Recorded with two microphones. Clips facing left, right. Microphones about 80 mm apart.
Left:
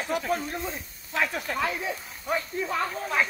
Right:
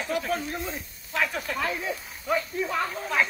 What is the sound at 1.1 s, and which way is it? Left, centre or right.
Speech, left.